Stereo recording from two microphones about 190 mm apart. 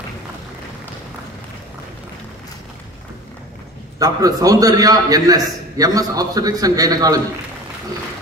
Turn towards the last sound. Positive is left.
turn(degrees=-20)  # may be behind; listen again after turning